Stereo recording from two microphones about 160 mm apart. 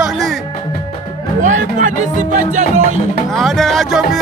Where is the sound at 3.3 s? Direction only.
Centre (ahead or behind).